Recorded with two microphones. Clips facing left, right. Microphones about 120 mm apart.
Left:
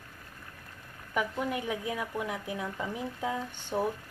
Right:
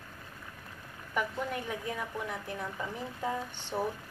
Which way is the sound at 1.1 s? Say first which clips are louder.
Left 2 dB; 5° left (ahead or behind).